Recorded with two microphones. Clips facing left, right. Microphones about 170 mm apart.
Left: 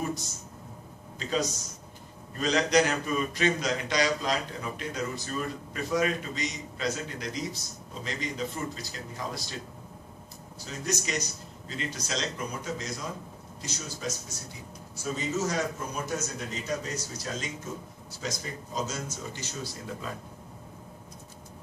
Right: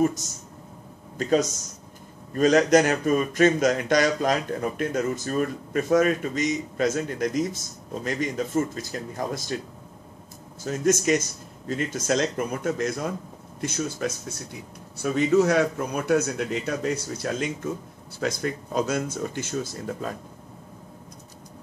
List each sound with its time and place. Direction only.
1.1 s speech: 50° right (ahead or behind)
10.6 s a man's voice: 50° right (ahead or behind)